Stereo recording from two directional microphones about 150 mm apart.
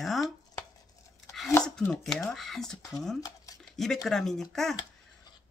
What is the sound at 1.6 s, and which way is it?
Speech, 5° left (ahead or behind).